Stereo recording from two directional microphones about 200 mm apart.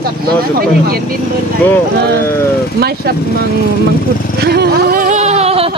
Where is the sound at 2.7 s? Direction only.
50° right (ahead or behind).